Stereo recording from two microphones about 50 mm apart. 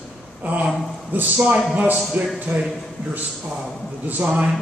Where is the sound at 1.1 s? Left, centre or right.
Right.